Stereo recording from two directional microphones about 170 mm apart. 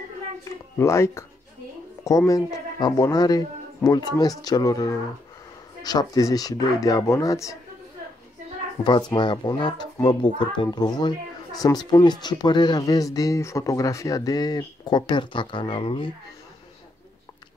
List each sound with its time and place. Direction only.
0.7 s a child's voice: 15° left (ahead or behind)
8.8 s a child's voice: 25° left (ahead or behind)